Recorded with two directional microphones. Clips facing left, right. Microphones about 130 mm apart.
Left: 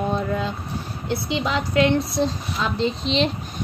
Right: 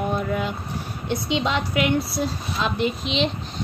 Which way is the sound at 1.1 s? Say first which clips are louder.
Even; 20° right (ahead or behind).